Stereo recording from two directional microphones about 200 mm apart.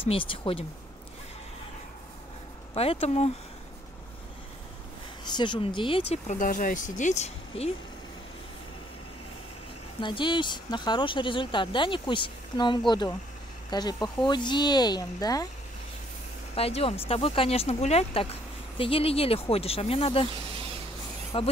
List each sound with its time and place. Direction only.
0.1 s speech: 25° left (ahead or behind)
2.7 s speech: 30° left (ahead or behind)
5.2 s speech: 20° left (ahead or behind)
9.9 s speech: 25° left (ahead or behind)
16.5 s speech: 30° left (ahead or behind)
21.3 s speech: 25° left (ahead or behind)